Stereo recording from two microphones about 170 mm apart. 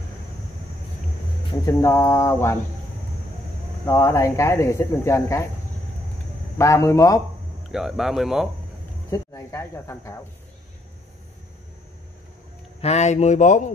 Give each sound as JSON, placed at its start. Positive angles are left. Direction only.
{"t": 1.7, "sound": "speech", "side_deg": 20}
{"t": 3.8, "sound": "speech", "side_deg": 15}
{"t": 6.6, "sound": "speech", "side_deg": 20}
{"t": 7.6, "sound": "speech", "side_deg": 0}
{"t": 9.1, "sound": "speech", "side_deg": 20}
{"t": 12.8, "sound": "speech", "side_deg": 40}